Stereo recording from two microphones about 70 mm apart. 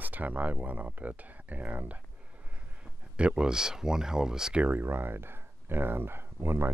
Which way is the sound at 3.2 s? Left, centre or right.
Centre.